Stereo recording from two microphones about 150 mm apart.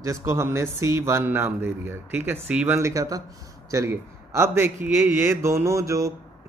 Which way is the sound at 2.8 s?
20° right (ahead or behind).